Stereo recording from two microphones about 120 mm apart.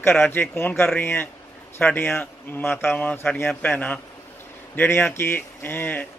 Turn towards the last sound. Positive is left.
turn(degrees=15)  # may be behind; listen again after turning